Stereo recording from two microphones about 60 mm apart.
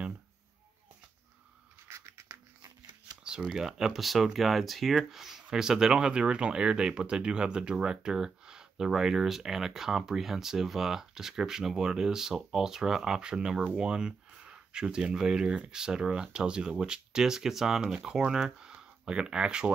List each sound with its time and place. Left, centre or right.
1.9 s scissors: right
3.3 s speech: centre